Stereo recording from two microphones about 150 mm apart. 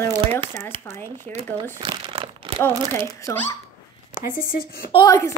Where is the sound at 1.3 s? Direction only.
45° right (ahead or behind).